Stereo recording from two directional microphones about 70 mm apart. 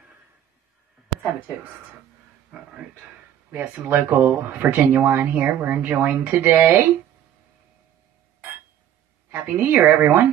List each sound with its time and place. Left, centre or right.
3.5 s speech: right
9.3 s a woman's voice: right